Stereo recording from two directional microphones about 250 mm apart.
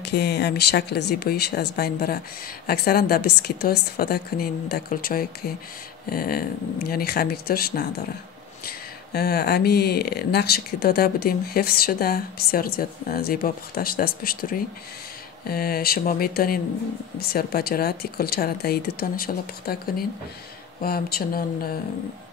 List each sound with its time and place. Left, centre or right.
0.0 s speech: left